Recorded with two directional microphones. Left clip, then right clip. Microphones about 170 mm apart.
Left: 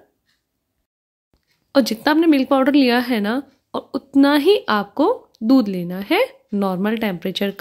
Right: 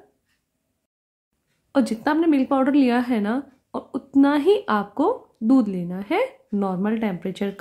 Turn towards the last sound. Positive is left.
turn(degrees=15)  # may be behind; listen again after turning